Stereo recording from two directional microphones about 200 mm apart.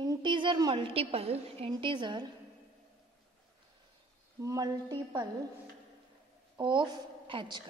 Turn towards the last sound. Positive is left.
turn(degrees=-25)  # may be behind; listen again after turning